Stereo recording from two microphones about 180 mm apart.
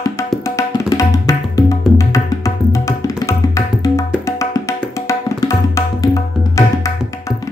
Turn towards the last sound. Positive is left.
turn(degrees=15)  # may be behind; listen again after turning